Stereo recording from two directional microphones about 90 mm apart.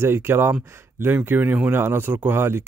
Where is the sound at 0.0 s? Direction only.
25° right (ahead or behind).